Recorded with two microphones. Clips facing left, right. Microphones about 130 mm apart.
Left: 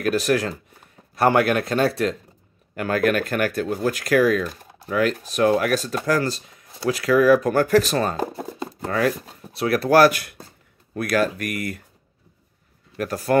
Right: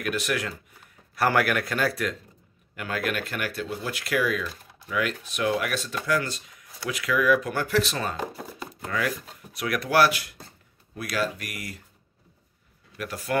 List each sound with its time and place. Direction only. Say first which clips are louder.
0.0 s speech: left 8 dB; 40° left (ahead or behind)
1.1 s speech: left 5 dB; 25° left (ahead or behind)
2.7 s speech: left 9 dB; 45° left (ahead or behind)
12.9 s speech: left 8 dB; 40° left (ahead or behind)